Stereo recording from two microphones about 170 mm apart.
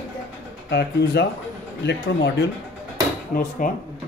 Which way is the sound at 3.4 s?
50° left (ahead or behind).